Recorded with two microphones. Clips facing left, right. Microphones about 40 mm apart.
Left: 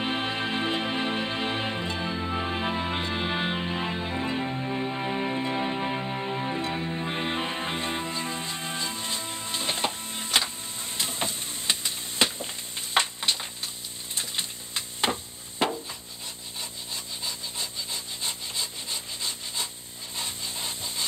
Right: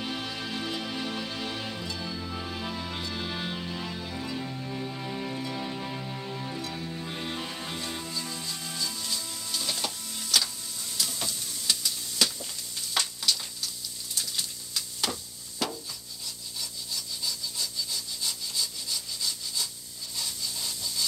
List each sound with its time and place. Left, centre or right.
0.0 s music: left
11.0 s a sound: left
15.6 s rub: left
16.9 s wood: left